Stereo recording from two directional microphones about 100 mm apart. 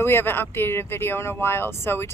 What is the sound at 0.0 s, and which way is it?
Speech, 20° left (ahead or behind).